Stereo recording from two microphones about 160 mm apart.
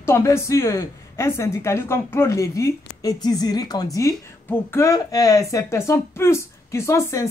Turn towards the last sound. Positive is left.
turn(degrees=20)  # may be behind; listen again after turning